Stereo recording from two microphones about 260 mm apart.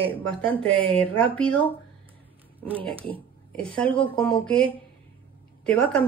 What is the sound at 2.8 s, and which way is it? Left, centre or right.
A woman's voice, centre.